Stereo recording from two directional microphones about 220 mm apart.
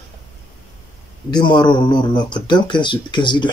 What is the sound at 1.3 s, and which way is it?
Speech, 20° left (ahead or behind).